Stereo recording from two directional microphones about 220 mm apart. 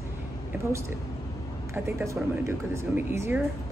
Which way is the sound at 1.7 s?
10° right (ahead or behind).